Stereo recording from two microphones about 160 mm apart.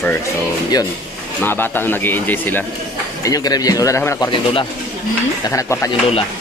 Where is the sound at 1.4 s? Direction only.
15° left (ahead or behind).